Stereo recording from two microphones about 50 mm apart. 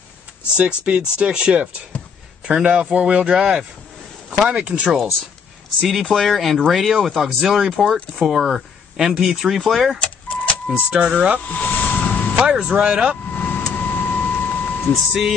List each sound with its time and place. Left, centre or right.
0.6 s speech: right
3.3 s speech: centre
4.5 s speech: right
4.8 s speech: centre
9.3 s speech: centre
9.9 s vehicle: left
10.7 s speech: right
11.6 s a sound: left
12.4 s vehicle: centre
12.8 s speech: centre
13.3 s vehicle: left
13.7 s a sound: left